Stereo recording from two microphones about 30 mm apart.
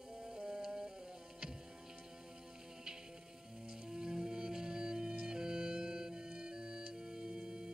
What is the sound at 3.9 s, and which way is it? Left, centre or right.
Music, right.